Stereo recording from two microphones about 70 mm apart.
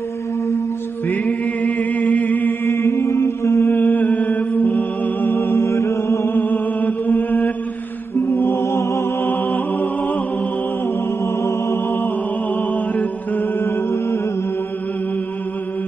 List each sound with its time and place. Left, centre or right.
1.0 s music: left
3.7 s music: left
4.7 s music: left
6.4 s music: left
7.2 s mantra: left
8.3 s mantra: left
11.4 s music: left
12.5 s mantra: left
13.7 s mantra: left